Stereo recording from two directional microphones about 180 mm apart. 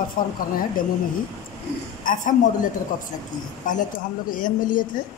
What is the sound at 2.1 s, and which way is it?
Speech, 50° left (ahead or behind).